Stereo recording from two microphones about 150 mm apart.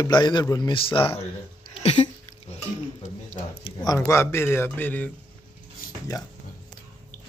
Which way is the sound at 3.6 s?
25° left (ahead or behind).